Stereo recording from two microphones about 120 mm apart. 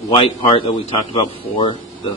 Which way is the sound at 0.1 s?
45° left (ahead or behind).